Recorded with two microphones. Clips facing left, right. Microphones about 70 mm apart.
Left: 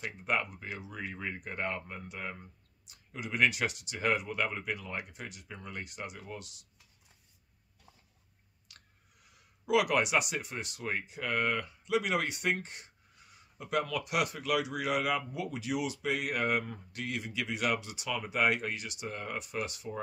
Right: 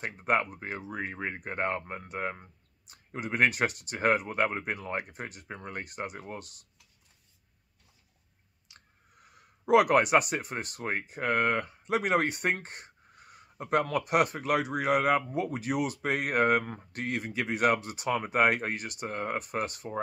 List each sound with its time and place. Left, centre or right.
0.0 s speech: right
8.7 s a sound: right
9.1 s speech: right